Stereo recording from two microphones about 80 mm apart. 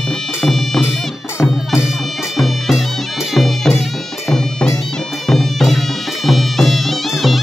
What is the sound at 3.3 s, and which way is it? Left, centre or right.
Music, centre.